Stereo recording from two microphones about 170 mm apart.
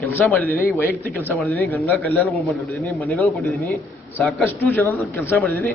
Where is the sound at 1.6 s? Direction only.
10° left (ahead or behind).